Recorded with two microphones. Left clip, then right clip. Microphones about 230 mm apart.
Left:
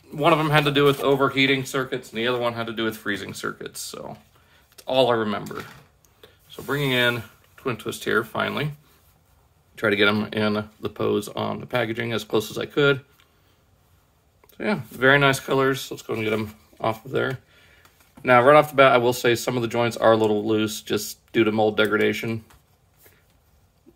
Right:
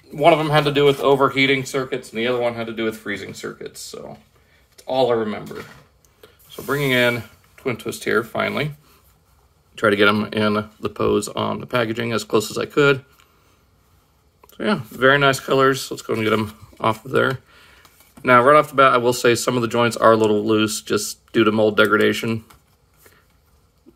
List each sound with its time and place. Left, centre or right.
0.1 s speech: centre; by 5.4 s left
6.2 s speech: centre
9.8 s speech: centre
14.4 s speech: centre